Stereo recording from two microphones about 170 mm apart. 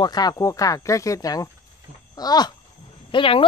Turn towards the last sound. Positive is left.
turn(degrees=30)  # may be behind; listen again after turning